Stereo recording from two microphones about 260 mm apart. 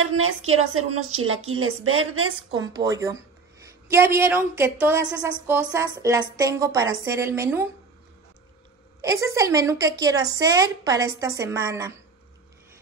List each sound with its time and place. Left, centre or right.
0.0 s a woman's voice: right
2.5 s a woman's voice: centre
9.0 s a woman's voice: centre